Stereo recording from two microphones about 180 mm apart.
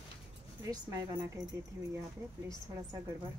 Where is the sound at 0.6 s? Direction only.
20° right (ahead or behind).